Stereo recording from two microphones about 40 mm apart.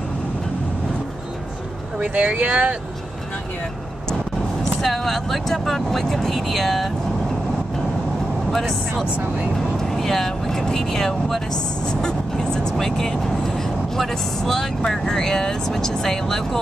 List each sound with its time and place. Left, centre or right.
2.0 s speech: right
4.8 s speech: centre
8.5 s speech: centre
11.8 s speech: centre
12.7 s speech: centre